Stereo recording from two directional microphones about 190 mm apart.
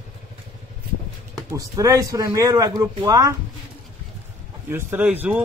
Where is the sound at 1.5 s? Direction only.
20° right (ahead or behind).